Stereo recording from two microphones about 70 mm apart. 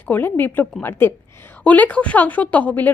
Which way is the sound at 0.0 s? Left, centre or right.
Left.